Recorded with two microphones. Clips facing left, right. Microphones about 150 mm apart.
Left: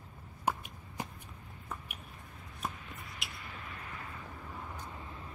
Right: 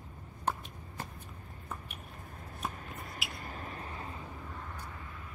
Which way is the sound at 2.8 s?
45° right (ahead or behind).